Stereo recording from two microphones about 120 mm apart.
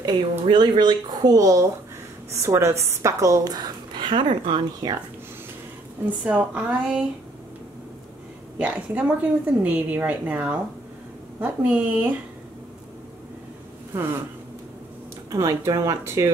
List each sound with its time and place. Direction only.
0.0 s a woman's voice: 40° right (ahead or behind)
6.2 s a woman's voice: 10° right (ahead or behind)
8.5 s a woman's voice: 10° right (ahead or behind)
13.9 s a woman's voice: 20° right (ahead or behind)
15.3 s a woman's voice: 25° right (ahead or behind)